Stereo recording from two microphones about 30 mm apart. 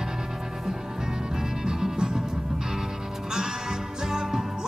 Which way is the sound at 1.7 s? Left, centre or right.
Centre.